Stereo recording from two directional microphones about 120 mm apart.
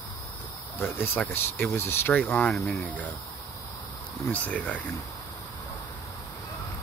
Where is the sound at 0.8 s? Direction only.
20° left (ahead or behind).